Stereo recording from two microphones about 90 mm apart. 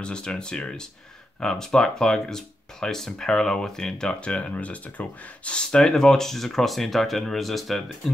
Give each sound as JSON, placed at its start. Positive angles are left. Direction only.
{"t": 0.0, "sound": "speech", "side_deg": 10}